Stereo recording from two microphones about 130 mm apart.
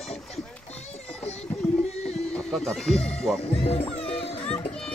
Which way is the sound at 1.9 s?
55° left (ahead or behind).